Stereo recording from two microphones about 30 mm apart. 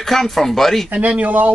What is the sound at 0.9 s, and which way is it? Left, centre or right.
Speech, right.